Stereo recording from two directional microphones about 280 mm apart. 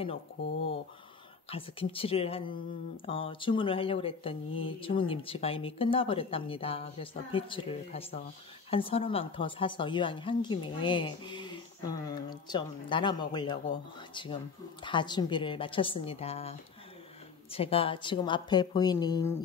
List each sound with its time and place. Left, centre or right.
1.5 s a woman's voice: centre